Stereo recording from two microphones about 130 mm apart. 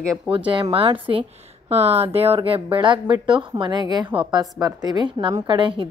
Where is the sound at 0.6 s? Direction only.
45° right (ahead or behind).